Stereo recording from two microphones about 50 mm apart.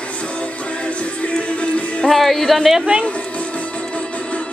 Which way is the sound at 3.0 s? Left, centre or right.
Left.